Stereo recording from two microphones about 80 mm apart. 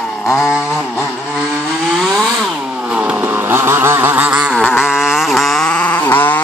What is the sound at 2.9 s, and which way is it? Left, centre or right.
Chainsaw, centre.